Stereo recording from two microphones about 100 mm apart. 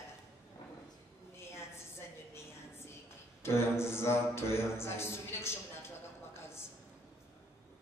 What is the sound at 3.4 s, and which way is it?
Speech, 25° left (ahead or behind).